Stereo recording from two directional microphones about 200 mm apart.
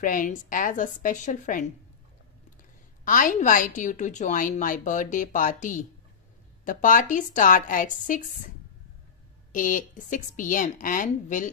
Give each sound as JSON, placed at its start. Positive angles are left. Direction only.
{"t": 0.0, "sound": "a woman's voice", "side_deg": 40}
{"t": 3.1, "sound": "a woman's voice", "side_deg": 40}